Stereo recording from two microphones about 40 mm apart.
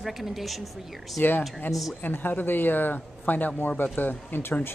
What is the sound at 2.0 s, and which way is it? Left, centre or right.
A man's voice, left.